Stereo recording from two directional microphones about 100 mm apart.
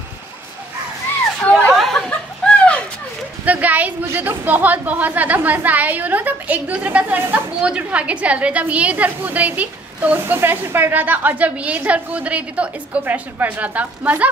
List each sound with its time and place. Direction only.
1.7 s chuckle: 5° left (ahead or behind)
2.0 s a sound: 10° left (ahead or behind)
3.4 s a woman's voice: 15° right (ahead or behind)